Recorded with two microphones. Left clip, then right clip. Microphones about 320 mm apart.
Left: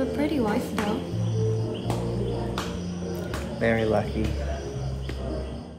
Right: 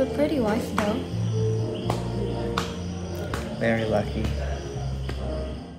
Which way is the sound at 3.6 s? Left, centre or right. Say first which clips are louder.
Left 1 dB; centre.